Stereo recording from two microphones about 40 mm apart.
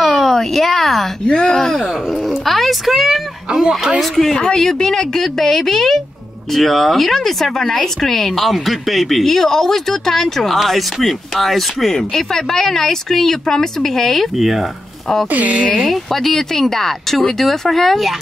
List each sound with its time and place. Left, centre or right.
0.0 s a sound: centre
1.2 s speech: left
1.6 s speech: centre
2.2 s a sound: centre
4.0 s speech: centre
4.4 s speech: centre
14.3 s speech: centre
15.3 s speech: right
15.8 s speech: centre